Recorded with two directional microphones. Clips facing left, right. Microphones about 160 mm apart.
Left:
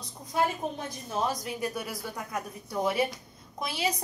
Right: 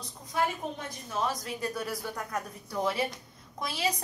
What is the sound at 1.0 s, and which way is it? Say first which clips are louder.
Speech: left 1 dB; 20° left (ahead or behind).